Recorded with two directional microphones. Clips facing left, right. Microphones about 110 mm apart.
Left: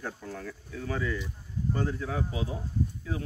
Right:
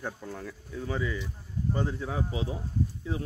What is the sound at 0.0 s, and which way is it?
Speech, 15° right (ahead or behind).